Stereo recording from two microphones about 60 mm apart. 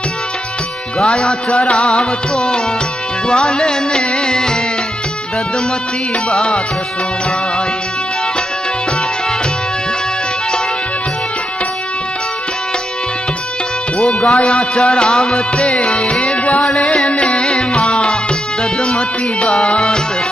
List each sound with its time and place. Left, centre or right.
0.9 s music: centre
13.9 s music: centre